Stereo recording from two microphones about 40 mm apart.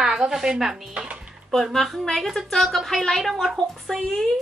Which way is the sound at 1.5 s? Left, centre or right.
Centre.